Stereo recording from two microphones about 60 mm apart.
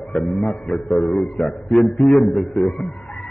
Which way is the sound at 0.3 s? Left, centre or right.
Centre.